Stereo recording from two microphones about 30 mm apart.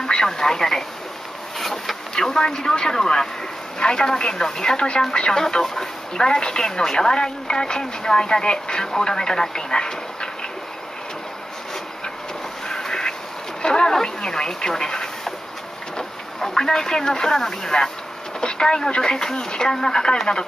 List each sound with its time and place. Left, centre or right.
0.0 s speech: left
1.6 s a sound: centre
2.1 s speech: left
12.6 s duck: left
13.6 s a sound: left
14.0 s speech: left